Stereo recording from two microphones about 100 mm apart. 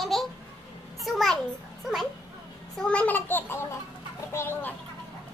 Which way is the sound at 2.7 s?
10° left (ahead or behind).